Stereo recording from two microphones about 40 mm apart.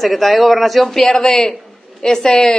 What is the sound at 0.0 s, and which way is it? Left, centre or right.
Speech, centre.